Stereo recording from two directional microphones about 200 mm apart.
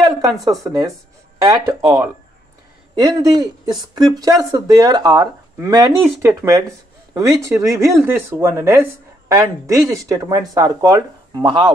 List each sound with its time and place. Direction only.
0.5 s speech: 15° right (ahead or behind)